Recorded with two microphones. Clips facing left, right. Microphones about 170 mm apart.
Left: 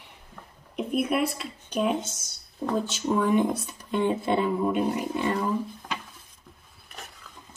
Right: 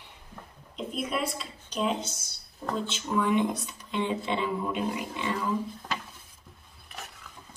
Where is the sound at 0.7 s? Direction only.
60° left (ahead or behind).